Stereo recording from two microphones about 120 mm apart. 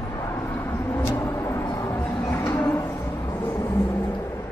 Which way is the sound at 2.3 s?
25° left (ahead or behind).